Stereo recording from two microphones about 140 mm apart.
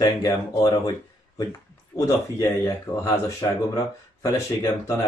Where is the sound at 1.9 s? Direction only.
25° left (ahead or behind).